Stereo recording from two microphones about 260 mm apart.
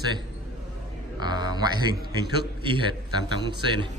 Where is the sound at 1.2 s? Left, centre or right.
Centre.